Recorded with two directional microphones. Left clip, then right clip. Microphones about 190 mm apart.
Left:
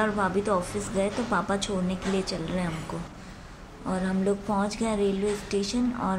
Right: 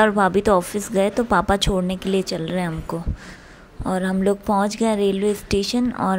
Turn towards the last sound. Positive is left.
turn(degrees=-45)  # may be behind; listen again after turning